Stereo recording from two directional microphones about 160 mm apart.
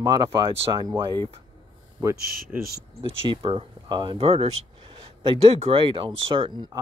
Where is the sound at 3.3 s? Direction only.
30° right (ahead or behind).